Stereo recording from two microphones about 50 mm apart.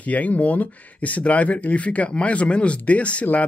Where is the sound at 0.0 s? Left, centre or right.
Left.